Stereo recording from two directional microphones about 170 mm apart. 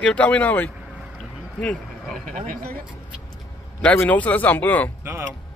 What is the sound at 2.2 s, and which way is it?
Speech, 55° right (ahead or behind).